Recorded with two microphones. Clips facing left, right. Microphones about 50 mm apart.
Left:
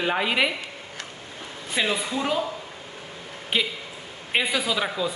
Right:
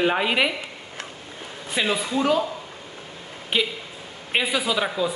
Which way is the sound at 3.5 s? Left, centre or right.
Centre.